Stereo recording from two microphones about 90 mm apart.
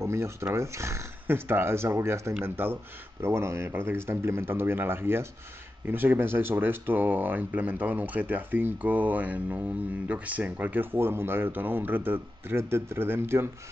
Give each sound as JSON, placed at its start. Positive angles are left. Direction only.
{"t": 0.0, "sound": "speech", "side_deg": -30}